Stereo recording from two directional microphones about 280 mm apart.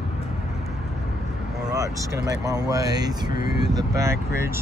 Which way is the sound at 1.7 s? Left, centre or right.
Centre.